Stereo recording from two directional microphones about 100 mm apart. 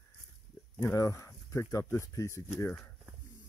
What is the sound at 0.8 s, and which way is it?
Speech, 25° left (ahead or behind).